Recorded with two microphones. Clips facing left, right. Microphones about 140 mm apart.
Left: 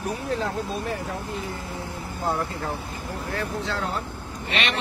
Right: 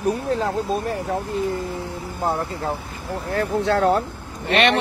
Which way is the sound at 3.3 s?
55° right (ahead or behind).